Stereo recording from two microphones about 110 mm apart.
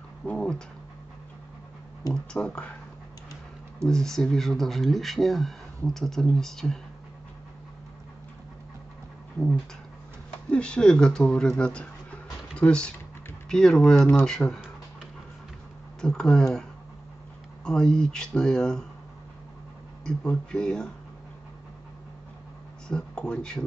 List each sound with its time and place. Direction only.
0.2 s dog: 10° left (ahead or behind)
2.1 s speech: 10° left (ahead or behind)
3.8 s speech: 5° left (ahead or behind)
10.5 s speech: 10° left (ahead or behind)
13.9 s speech: 20° left (ahead or behind)
14.2 s speech: 5° left (ahead or behind)
16.0 s speech: 5° left (ahead or behind)
17.6 s speech: 5° left (ahead or behind)
20.1 s speech: 10° left (ahead or behind)
22.8 s speech: 10° left (ahead or behind)